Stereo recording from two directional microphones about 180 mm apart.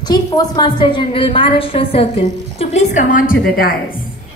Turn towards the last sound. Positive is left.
turn(degrees=55)  # may be behind; listen again after turning